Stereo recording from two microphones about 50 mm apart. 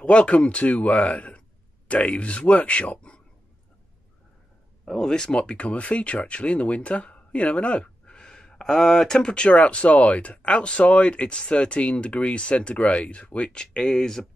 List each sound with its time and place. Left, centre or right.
0.0 s speech: left
4.8 s speech: centre